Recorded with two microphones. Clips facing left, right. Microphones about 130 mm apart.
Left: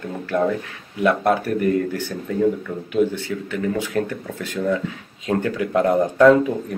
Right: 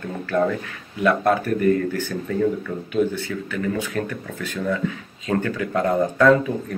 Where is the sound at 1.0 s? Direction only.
20° left (ahead or behind).